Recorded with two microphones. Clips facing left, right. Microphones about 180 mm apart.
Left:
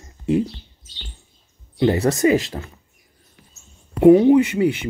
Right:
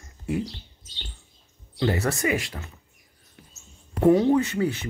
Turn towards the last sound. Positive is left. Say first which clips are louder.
# left 7 dB
turn(degrees=15)  # may be behind; listen again after turning